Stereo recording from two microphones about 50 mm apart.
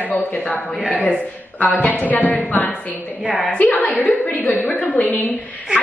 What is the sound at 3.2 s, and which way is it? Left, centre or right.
Speech, right.